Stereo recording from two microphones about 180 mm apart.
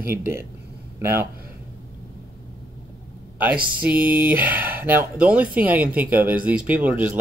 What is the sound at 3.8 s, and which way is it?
Speech, 10° right (ahead or behind).